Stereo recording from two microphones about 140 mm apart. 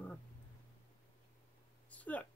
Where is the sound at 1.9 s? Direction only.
10° left (ahead or behind).